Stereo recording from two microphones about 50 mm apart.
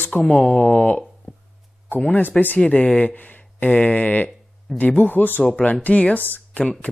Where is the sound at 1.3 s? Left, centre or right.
Centre.